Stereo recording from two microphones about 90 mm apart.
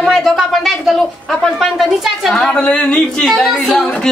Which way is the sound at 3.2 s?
Centre (ahead or behind).